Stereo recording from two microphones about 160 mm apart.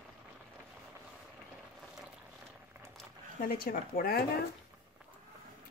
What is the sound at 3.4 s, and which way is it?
Speech, 65° left (ahead or behind).